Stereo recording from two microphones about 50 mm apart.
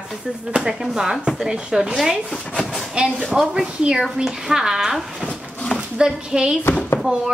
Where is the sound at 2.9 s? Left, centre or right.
Right.